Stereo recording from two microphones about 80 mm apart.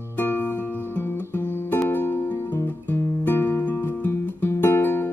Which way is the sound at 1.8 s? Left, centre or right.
Left.